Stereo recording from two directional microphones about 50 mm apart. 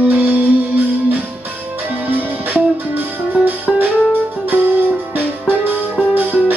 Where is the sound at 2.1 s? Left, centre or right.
Right.